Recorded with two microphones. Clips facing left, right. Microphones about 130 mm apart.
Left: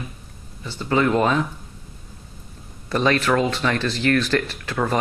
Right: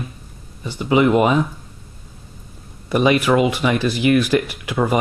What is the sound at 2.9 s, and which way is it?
Speech, 10° right (ahead or behind).